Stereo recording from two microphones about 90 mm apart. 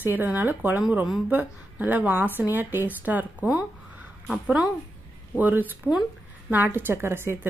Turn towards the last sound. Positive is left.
turn(degrees=-25)  # may be behind; listen again after turning